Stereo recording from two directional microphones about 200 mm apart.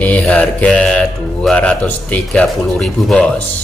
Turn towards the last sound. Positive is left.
turn(degrees=5)  # may be behind; listen again after turning